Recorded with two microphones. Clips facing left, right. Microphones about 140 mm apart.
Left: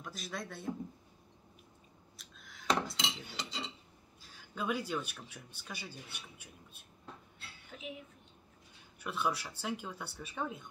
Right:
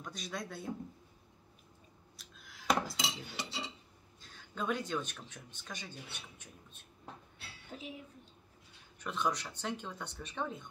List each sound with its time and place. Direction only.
0.0 s speech: centre (ahead or behind)
2.1 s cutlery: centre (ahead or behind)
4.2 s speech: 10° left (ahead or behind)
7.7 s speech: 35° right (ahead or behind)
9.0 s speech: 5° left (ahead or behind)